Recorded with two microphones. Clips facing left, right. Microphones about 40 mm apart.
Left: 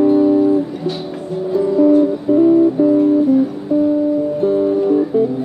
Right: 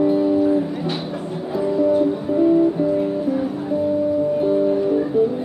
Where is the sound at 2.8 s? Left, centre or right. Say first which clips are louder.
Left 7 dB; centre.